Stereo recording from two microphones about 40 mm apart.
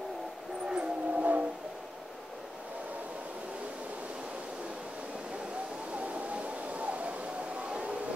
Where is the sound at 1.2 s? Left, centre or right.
Right.